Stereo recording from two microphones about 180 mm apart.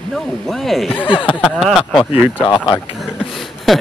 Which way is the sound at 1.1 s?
30° left (ahead or behind).